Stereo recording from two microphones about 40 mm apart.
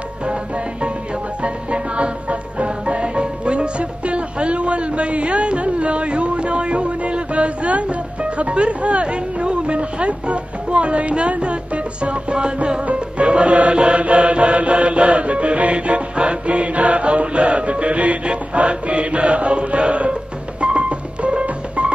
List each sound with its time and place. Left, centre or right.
1.4 s music: right